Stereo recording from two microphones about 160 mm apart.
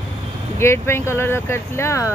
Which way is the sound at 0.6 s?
15° left (ahead or behind).